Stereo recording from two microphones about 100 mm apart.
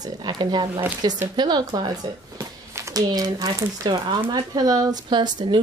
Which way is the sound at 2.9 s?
40° right (ahead or behind).